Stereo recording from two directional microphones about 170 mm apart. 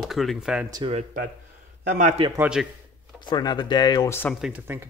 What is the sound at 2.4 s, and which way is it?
Speech, 5° right (ahead or behind).